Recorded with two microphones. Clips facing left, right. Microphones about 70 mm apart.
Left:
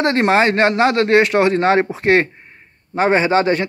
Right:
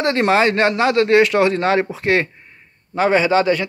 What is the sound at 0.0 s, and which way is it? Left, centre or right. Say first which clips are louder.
Speech: left 1 dB; left.